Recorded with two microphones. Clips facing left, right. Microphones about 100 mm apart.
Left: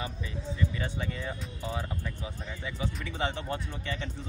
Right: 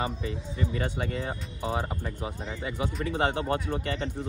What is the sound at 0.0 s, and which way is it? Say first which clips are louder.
Speech: right 5 dB; 70° right (ahead or behind).